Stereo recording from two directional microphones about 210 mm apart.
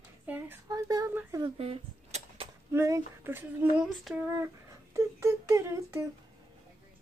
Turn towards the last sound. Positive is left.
turn(degrees=-15)  # may be behind; listen again after turning